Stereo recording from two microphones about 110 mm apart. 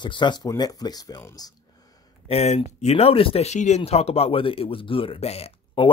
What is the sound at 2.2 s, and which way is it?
Speech, 70° left (ahead or behind).